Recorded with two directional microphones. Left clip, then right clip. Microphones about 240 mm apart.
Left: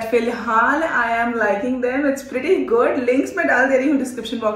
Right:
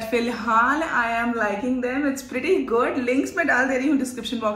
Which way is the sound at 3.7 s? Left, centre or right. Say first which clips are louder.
Left 5 dB; centre.